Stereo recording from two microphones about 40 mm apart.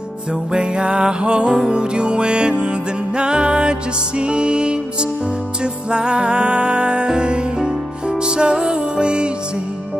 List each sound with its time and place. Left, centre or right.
0.5 s music: right